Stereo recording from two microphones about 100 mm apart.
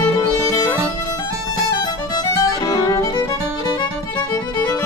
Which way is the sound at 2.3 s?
35° left (ahead or behind).